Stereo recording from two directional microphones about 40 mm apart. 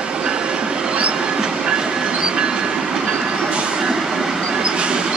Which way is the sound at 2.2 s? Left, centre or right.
Right.